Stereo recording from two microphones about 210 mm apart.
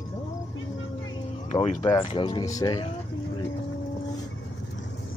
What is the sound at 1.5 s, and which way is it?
Speech, 25° left (ahead or behind).